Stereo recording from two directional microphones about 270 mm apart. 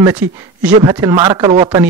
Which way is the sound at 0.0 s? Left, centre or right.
Centre.